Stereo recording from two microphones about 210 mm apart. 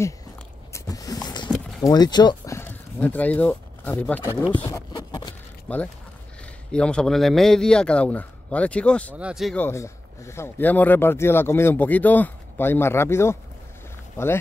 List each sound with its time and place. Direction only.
0.7 s a sound: 15° left (ahead or behind)
1.8 s speech: 20° left (ahead or behind)
5.7 s a man's voice: 5° left (ahead or behind)
9.7 s speech: 15° left (ahead or behind)